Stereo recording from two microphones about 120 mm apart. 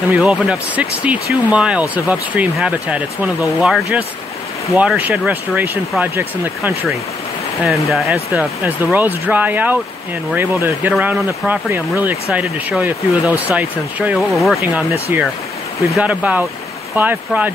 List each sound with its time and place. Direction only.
0.1 s speech: 5° right (ahead or behind)
7.6 s speech: centre (ahead or behind)
14.1 s speech: centre (ahead or behind)
14.6 s speech: 15° right (ahead or behind)